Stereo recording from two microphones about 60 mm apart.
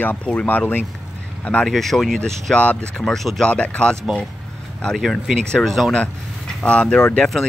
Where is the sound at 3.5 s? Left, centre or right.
Centre.